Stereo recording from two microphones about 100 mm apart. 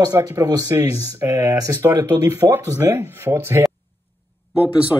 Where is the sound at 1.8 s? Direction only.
25° right (ahead or behind).